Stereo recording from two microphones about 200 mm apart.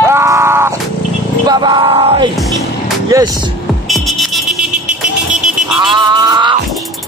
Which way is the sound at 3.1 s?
15° right (ahead or behind).